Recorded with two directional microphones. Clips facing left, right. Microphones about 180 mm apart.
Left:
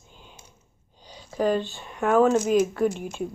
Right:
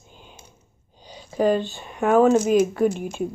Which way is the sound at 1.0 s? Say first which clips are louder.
Right 4 dB; 15° right (ahead or behind).